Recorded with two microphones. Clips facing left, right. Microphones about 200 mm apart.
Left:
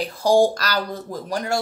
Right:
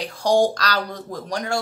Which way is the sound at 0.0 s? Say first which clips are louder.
Left 2 dB; 5° left (ahead or behind).